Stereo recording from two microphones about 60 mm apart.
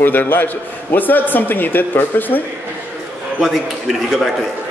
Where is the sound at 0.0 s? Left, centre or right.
Left.